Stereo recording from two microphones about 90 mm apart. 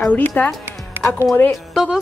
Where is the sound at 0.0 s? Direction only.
15° left (ahead or behind).